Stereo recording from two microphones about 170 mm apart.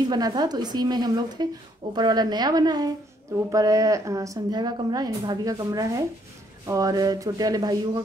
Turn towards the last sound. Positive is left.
turn(degrees=-20)  # may be behind; listen again after turning